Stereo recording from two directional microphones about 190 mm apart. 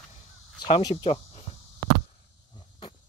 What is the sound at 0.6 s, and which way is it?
Speech, 25° left (ahead or behind).